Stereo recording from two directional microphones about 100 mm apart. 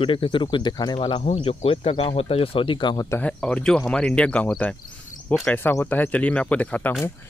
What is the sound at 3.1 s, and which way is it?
Speech, 10° left (ahead or behind).